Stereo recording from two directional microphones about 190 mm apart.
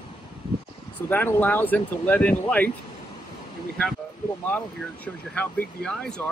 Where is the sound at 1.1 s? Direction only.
10° left (ahead or behind).